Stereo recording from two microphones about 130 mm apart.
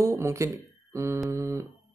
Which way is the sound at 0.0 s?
25° right (ahead or behind).